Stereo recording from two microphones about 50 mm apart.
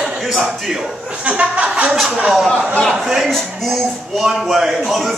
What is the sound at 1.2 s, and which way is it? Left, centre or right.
Speech, right.